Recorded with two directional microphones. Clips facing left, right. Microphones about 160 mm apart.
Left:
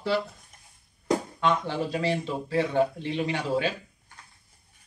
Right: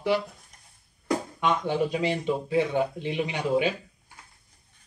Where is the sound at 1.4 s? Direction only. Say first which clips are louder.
Right 1 dB; 15° right (ahead or behind).